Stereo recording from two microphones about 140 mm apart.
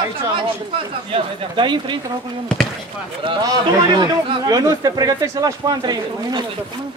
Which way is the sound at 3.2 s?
30° right (ahead or behind).